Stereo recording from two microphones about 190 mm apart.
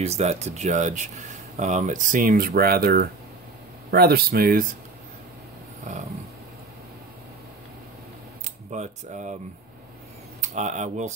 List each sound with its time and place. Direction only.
0.0 s speech: 35° right (ahead or behind); by 4.6 s 50° right (ahead or behind)
5.9 s speech: 40° right (ahead or behind)
8.7 s speech: 40° right (ahead or behind)
10.5 s speech: 40° right (ahead or behind)